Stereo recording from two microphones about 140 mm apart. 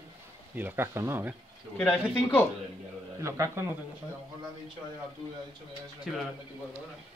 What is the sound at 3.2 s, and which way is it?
Speech, 20° right (ahead or behind).